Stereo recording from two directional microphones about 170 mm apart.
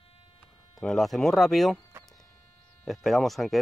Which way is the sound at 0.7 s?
Centre (ahead or behind).